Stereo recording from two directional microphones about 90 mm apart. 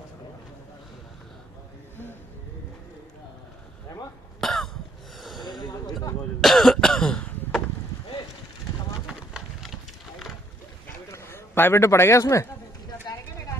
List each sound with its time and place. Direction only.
3.9 s cough: 45° left (ahead or behind)
4.4 s cough: 5° left (ahead or behind)
5.2 s snort: centre (ahead or behind)
5.6 s a sound: 50° left (ahead or behind)
6.4 s throat clearing: 5° left (ahead or behind)
9.0 s a sound: 5° right (ahead or behind)
11.1 s a man's voice: 30° left (ahead or behind)